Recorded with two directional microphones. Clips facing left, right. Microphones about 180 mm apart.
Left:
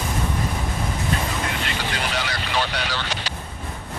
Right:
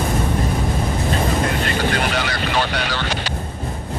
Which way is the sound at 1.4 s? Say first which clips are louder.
Right 7 dB; 45° right (ahead or behind).